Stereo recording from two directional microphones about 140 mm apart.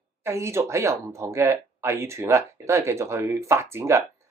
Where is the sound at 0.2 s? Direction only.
20° right (ahead or behind).